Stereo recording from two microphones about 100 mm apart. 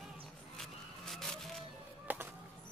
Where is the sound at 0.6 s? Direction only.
5° left (ahead or behind).